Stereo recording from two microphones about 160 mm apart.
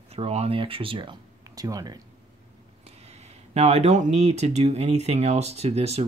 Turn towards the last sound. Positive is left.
turn(degrees=-40)  # may be behind; listen again after turning